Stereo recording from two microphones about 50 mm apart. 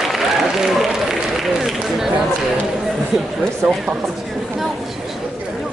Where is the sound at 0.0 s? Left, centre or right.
Centre.